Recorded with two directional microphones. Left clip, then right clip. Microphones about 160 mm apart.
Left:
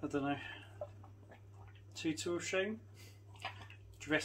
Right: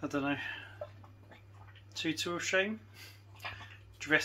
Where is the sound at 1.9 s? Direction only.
30° right (ahead or behind).